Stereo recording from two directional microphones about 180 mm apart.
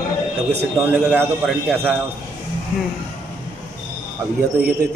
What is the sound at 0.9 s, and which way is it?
Speech, 10° right (ahead or behind).